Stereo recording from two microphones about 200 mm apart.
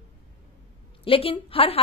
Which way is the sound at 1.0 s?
25° left (ahead or behind).